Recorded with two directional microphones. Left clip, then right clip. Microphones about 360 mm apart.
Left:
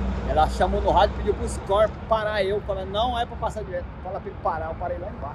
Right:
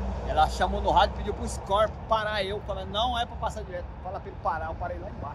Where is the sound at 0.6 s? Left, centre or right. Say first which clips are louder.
Left 3 dB; centre.